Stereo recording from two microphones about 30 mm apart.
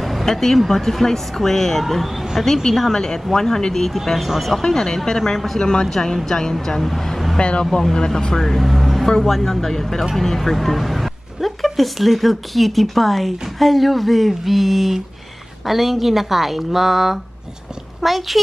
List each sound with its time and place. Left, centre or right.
0.0 s a sound: centre
0.3 s speech: centre
3.9 s a woman's voice: centre
4.6 s speech: left
5.6 s speech: left
5.9 s speech: centre
7.3 s speech: left
7.9 s speech: left
8.4 s speech: centre
8.6 s a woman's voice: centre